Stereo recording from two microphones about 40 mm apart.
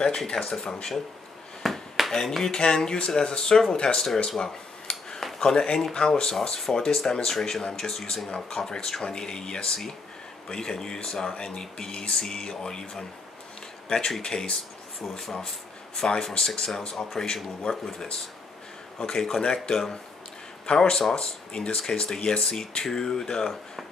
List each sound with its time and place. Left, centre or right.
0.3 s speech: centre
0.7 s speech: left
1.6 s a sound: centre
2.5 s speech: centre
4.9 s a sound: left
5.4 s speech: centre
13.8 s speech: centre
16.0 s speech: left
19.0 s speech: centre
19.4 s speech: left
19.7 s speech: centre